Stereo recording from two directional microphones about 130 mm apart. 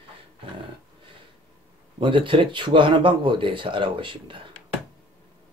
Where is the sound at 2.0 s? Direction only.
40° right (ahead or behind).